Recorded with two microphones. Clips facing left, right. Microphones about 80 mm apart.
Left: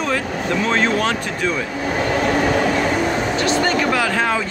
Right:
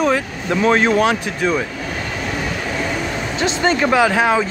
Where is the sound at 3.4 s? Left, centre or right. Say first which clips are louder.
Right 3 dB; right.